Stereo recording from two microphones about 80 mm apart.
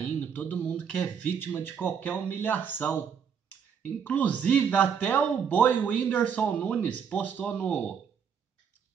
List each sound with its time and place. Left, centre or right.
0.0 s speech: left
4.0 s speech: centre